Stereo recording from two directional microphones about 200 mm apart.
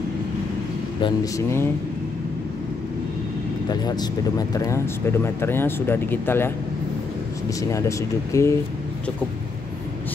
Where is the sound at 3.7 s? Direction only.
20° left (ahead or behind).